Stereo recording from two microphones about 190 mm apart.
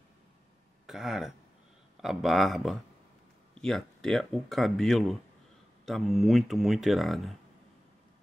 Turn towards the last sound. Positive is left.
turn(degrees=0)  # may be behind; listen again after turning